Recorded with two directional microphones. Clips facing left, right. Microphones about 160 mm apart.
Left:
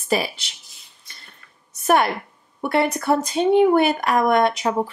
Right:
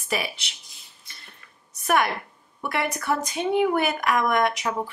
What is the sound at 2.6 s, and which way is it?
Speech, 30° left (ahead or behind).